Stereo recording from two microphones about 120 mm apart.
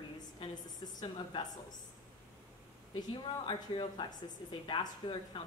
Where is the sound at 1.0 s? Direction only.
40° left (ahead or behind).